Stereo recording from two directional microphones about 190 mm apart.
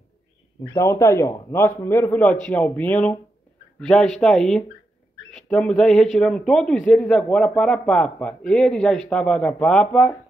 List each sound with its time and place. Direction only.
0.6 s a man's voice: 15° left (ahead or behind)